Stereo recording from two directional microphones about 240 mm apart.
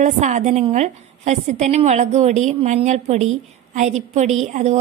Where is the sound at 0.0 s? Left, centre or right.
Right.